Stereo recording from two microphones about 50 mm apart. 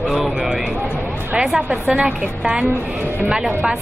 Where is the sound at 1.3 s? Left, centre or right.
Centre.